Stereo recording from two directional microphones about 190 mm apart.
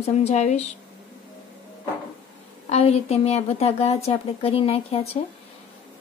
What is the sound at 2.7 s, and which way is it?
Speech, 35° left (ahead or behind).